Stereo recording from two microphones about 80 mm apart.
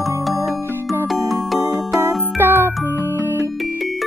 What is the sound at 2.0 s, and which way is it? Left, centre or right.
Music, right.